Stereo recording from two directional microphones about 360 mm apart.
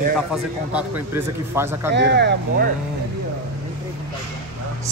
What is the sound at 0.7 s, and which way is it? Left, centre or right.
A man's voice, centre.